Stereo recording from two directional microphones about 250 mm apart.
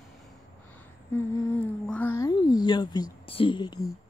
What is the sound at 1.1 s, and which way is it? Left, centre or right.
Humming, centre.